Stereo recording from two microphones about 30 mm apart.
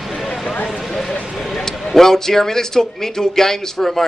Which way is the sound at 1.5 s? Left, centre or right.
Centre.